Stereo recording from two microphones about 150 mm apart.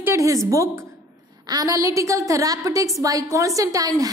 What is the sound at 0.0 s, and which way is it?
A woman's voice, 20° right (ahead or behind).